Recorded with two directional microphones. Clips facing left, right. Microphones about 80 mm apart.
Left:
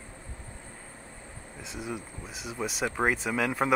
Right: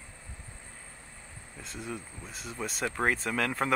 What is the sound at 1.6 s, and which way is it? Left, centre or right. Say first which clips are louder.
Speech: left 2 dB; centre.